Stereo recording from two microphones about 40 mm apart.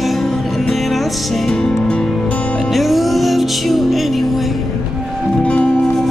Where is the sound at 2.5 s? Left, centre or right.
Centre.